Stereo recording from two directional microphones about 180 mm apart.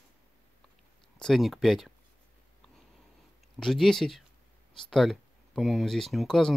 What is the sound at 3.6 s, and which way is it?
Speech, centre (ahead or behind).